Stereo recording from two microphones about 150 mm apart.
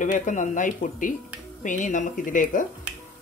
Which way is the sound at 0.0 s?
55° left (ahead or behind).